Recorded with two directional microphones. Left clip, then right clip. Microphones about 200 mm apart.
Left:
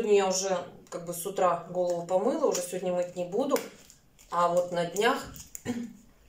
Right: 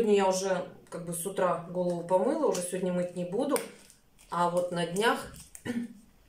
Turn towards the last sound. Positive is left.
turn(degrees=0)  # may be behind; listen again after turning